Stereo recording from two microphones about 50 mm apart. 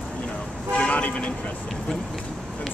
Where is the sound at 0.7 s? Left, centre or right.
Left.